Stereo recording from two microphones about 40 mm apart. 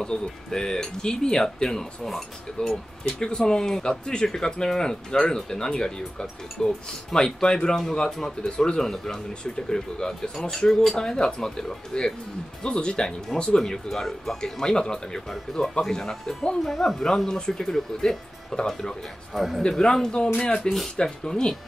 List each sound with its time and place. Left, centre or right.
0.0 s speech: centre
10.7 s speech: centre
11.0 s speech: centre
12.7 s speech: left
13.6 s speech: centre
20.6 s speech: centre
20.9 s speech: centre